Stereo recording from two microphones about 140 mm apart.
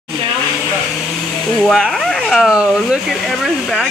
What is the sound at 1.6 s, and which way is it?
Speech, centre (ahead or behind).